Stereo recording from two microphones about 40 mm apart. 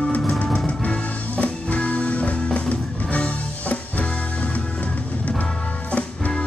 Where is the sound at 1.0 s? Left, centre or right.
Left.